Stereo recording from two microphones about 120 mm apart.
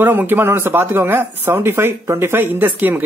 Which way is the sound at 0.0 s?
15° right (ahead or behind).